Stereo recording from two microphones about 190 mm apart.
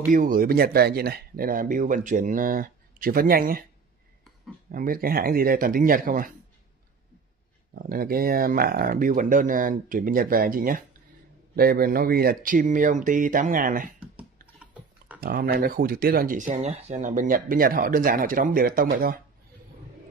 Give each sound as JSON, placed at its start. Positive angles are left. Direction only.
{"t": 0.1, "sound": "speech", "side_deg": -45}
{"t": 4.6, "sound": "speech", "side_deg": -50}
{"t": 7.7, "sound": "speech", "side_deg": -50}
{"t": 13.9, "sound": "typing", "side_deg": -5}
{"t": 15.1, "sound": "speech", "side_deg": -50}